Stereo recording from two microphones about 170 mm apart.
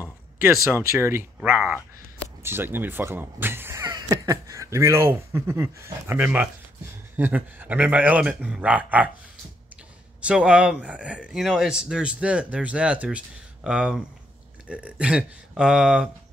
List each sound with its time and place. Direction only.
0.4 s speech: 15° right (ahead or behind)
10.2 s speech: 5° right (ahead or behind)